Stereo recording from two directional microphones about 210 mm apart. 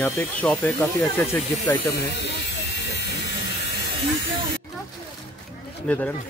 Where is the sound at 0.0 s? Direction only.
10° left (ahead or behind).